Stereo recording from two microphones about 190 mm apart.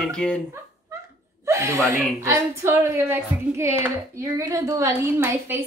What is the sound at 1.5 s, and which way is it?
Speech, 15° right (ahead or behind).